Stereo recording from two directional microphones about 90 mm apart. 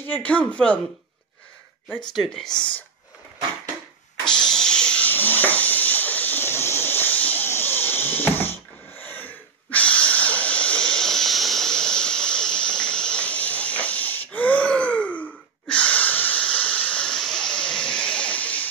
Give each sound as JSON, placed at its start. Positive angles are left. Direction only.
{"t": 0.0, "sound": "speech", "side_deg": 20}
{"t": 2.1, "sound": "speech", "side_deg": 0}
{"t": 4.6, "sound": "a sound", "side_deg": 10}
{"t": 8.9, "sound": "wheeze", "side_deg": 20}